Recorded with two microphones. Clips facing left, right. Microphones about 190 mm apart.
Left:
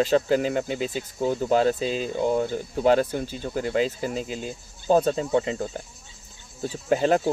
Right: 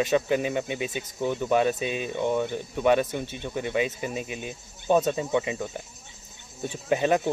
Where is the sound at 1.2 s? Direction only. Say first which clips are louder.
Left 3 dB; 30° left (ahead or behind).